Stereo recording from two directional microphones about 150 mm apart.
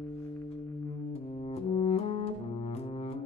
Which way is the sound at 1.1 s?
40° left (ahead or behind).